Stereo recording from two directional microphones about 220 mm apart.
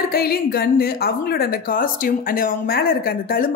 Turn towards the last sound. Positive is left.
turn(degrees=45)  # may be behind; listen again after turning